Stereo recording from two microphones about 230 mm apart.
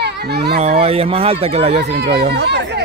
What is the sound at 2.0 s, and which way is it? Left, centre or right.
Speech, right.